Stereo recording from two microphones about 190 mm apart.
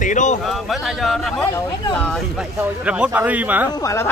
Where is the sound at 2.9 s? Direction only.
5° right (ahead or behind).